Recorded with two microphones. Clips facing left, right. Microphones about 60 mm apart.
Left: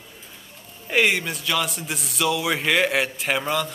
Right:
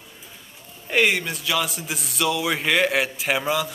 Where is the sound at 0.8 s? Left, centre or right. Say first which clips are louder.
Even; centre.